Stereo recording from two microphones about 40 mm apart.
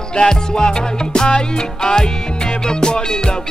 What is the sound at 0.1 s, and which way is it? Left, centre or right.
Music, centre.